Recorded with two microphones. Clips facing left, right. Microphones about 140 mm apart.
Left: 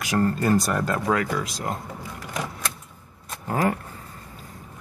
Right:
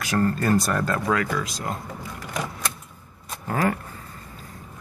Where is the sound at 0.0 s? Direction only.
20° left (ahead or behind).